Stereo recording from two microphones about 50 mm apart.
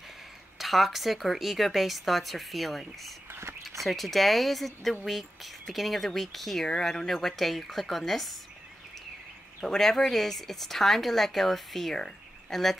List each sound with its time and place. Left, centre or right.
0.6 s speech: centre
3.3 s a sound: right
3.8 s speech: centre
9.6 s speech: centre